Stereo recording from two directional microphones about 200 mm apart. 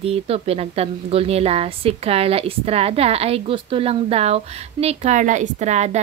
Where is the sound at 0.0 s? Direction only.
30° right (ahead or behind).